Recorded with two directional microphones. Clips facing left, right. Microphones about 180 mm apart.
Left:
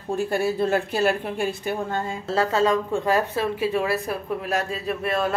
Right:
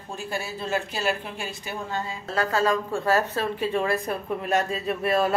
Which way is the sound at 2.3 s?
25° left (ahead or behind).